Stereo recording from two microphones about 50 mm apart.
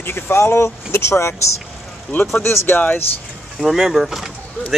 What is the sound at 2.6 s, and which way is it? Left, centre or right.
Speech, left.